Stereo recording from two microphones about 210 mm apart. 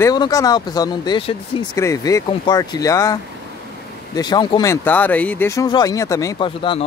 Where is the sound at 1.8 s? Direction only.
15° left (ahead or behind).